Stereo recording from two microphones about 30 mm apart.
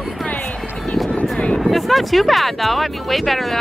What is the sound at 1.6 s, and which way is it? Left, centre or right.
Speech, centre.